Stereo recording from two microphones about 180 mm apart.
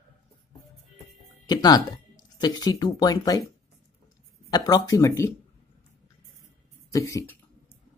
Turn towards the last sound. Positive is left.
turn(degrees=15)  # may be behind; listen again after turning